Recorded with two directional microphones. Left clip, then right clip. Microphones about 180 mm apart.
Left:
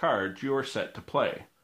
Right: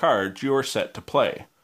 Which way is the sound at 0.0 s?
45° right (ahead or behind).